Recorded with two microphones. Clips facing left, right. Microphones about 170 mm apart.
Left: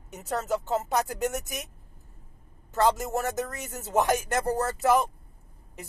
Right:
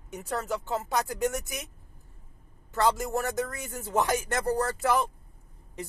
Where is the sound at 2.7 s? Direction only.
20° left (ahead or behind).